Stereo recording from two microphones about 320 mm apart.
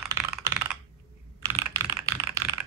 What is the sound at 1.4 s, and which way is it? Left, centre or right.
Computer keyboard, centre.